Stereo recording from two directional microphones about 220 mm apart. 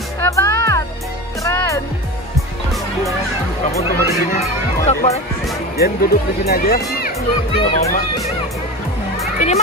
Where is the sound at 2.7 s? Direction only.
Centre (ahead or behind).